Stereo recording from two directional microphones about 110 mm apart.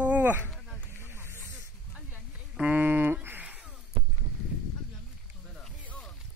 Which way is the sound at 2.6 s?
15° right (ahead or behind).